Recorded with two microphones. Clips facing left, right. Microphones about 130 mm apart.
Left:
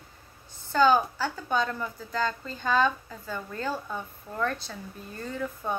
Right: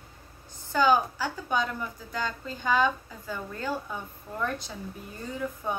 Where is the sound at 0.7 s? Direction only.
15° right (ahead or behind).